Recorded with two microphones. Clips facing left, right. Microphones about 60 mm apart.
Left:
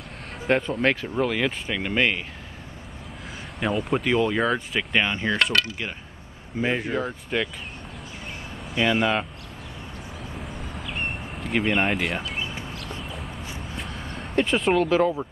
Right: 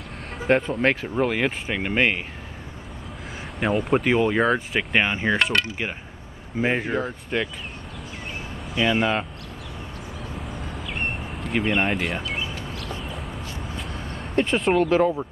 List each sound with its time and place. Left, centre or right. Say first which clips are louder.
0.5 s speech: right 2 dB; centre
3.5 s speech: right 3 dB; centre
4.1 s speech: even; right
4.4 s speech: right 3 dB; centre
5.4 s speech: even; centre
5.7 s speech: right 3 dB; right
7.0 s speech: right 1 dB; centre
8.7 s speech: even; centre
10.4 s a sound: right 2 dB; centre
11.1 s speech: right 1 dB; centre
13.0 s a sound: right 2 dB; centre
13.7 s vehicle: right 1 dB; centre